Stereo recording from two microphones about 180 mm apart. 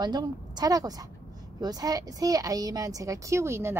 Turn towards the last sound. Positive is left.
turn(degrees=-15)  # may be behind; listen again after turning